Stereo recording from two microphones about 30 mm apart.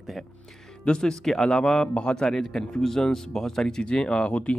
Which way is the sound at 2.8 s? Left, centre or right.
Centre.